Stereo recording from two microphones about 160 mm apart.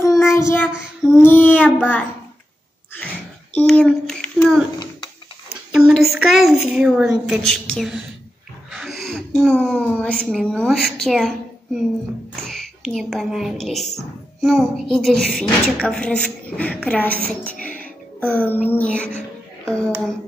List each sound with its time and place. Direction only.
0.4 s child singing: 15° left (ahead or behind)
1.1 s a woman's voice: 10° left (ahead or behind)
3.5 s a woman's voice: 5° left (ahead or behind)
5.7 s a woman's voice: 5° right (ahead or behind)
8.7 s wheeze: centre (ahead or behind)
9.6 s a woman's voice: 5° left (ahead or behind)
12.4 s a woman's voice: centre (ahead or behind)